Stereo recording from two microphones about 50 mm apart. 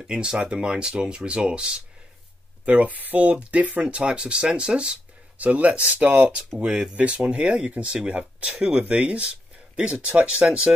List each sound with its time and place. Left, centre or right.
0.0 s speech: centre